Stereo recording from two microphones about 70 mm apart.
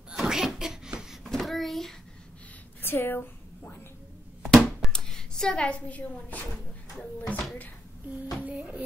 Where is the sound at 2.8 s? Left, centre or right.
Left.